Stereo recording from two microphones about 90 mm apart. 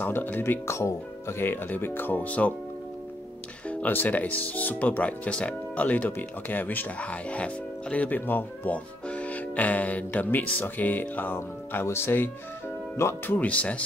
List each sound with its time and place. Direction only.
0.0 s speech: 20° left (ahead or behind)
3.6 s speech: 20° left (ahead or behind)
13.4 s speech: 15° left (ahead or behind)